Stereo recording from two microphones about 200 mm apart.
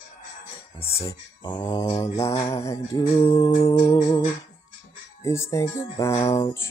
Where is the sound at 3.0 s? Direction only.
25° left (ahead or behind).